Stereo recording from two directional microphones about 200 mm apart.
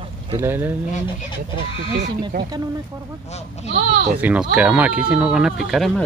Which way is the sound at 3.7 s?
30° right (ahead or behind).